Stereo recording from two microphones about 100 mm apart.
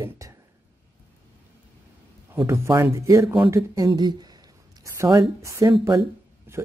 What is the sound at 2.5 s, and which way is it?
Speech, 30° right (ahead or behind).